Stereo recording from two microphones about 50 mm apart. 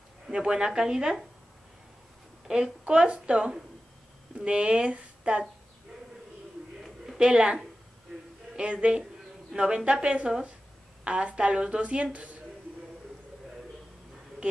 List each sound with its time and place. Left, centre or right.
0.3 s speech: centre
2.4 s a woman's voice: centre
7.2 s a woman's voice: centre
8.6 s a woman's voice: right